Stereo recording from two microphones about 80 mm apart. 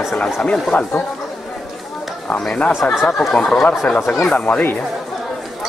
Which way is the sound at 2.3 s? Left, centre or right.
Centre.